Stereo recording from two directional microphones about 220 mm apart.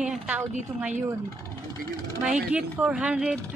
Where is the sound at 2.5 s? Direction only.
5° right (ahead or behind).